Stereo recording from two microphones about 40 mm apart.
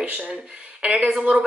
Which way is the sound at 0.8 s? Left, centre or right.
Right.